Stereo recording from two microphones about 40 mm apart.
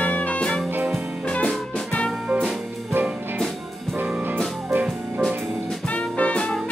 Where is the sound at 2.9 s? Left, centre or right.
Right.